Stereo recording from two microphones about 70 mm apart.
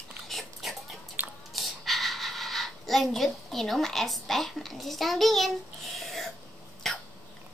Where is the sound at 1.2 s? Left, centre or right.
Right.